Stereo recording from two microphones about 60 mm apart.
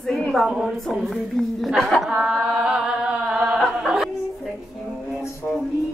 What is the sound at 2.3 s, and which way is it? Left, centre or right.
Chant, centre.